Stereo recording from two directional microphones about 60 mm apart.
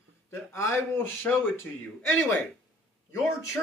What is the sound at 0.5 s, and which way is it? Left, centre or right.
Speech, left.